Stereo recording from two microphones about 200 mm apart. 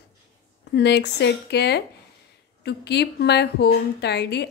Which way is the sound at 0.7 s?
55° left (ahead or behind).